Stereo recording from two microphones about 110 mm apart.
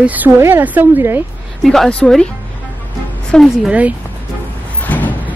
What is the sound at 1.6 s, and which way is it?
Speech, 5° left (ahead or behind).